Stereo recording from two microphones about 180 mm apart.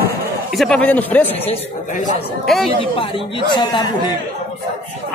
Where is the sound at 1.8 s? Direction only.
45° left (ahead or behind).